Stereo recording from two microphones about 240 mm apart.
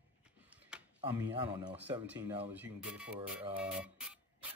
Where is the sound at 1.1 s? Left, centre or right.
Centre.